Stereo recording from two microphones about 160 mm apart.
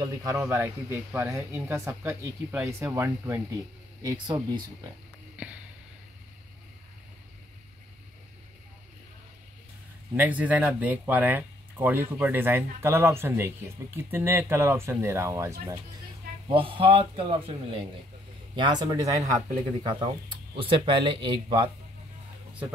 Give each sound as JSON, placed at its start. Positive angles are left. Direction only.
{"t": 0.0, "sound": "speech", "side_deg": -20}
{"t": 10.1, "sound": "speech", "side_deg": -10}
{"t": 16.4, "sound": "speech", "side_deg": -35}
{"t": 18.6, "sound": "speech", "side_deg": -25}